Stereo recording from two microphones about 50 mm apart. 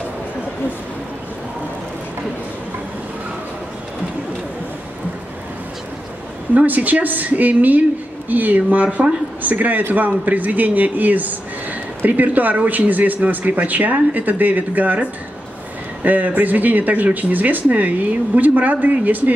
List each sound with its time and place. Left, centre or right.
6.5 s speech: right
16.0 s speech: right